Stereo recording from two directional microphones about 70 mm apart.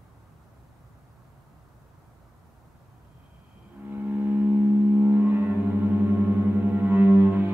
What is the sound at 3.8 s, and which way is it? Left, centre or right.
Music, right.